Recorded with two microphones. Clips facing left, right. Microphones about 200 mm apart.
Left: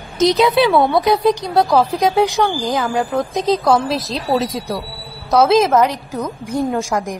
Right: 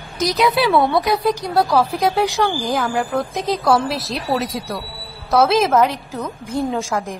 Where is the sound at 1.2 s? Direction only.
20° left (ahead or behind).